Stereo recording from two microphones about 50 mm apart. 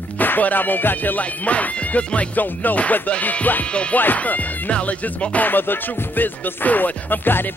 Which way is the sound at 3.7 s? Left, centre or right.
Left.